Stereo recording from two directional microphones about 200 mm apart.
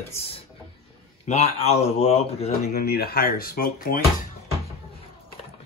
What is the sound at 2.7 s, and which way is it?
Speech, 50° left (ahead or behind).